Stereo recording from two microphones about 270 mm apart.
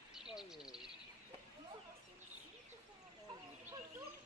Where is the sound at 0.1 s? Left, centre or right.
Centre.